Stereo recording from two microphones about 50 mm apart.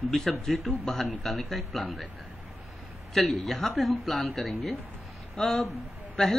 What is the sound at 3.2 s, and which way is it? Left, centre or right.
A woman's voice, centre.